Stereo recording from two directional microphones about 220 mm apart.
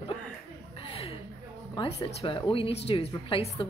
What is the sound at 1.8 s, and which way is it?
A woman's voice, 25° left (ahead or behind).